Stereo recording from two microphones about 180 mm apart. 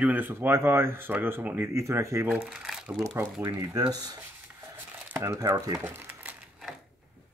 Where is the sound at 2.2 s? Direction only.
5° right (ahead or behind).